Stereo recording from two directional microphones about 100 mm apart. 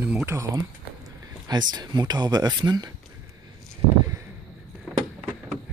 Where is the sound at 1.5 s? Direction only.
45° right (ahead or behind).